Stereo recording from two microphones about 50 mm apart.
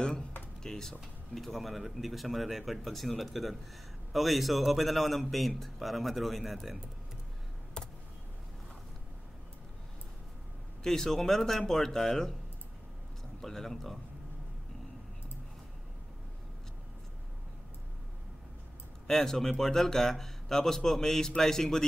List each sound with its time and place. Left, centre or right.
0.6 s speech: centre
7.8 s a sound: centre
10.8 s speech: centre
13.4 s speech: centre
19.0 s speech: centre